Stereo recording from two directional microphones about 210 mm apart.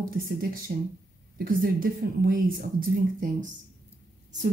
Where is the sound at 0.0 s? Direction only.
40° right (ahead or behind).